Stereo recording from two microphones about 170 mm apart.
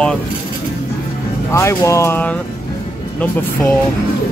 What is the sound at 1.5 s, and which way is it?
Speech, 15° left (ahead or behind).